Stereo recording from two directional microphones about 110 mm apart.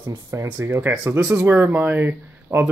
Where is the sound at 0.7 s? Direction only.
20° right (ahead or behind).